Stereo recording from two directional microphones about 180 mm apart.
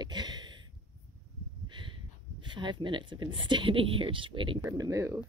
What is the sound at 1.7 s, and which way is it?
Speech, 25° right (ahead or behind).